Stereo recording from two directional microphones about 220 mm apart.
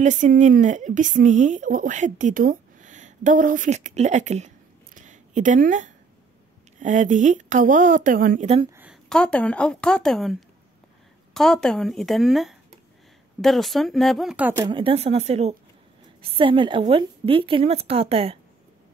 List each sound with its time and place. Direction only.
0.0 s speech: 35° right (ahead or behind)
4.9 s a sound: 35° right (ahead or behind)
6.8 s speech: 35° right (ahead or behind)
9.1 s a woman's voice: 5° left (ahead or behind)
11.3 s a woman's voice: centre (ahead or behind)
14.6 s a woman's voice: 20° right (ahead or behind)